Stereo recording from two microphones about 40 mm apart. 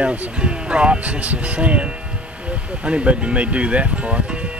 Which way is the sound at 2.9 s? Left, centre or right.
Right.